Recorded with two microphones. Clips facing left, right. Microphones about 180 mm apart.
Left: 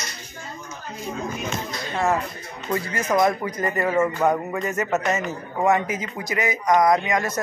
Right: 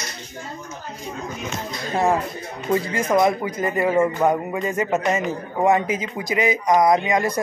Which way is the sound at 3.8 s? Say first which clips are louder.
Right 2 dB; 15° right (ahead or behind).